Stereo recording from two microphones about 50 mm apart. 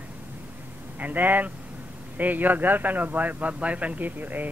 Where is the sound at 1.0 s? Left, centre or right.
Right.